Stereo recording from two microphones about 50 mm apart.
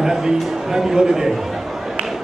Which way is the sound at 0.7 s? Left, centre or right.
Centre.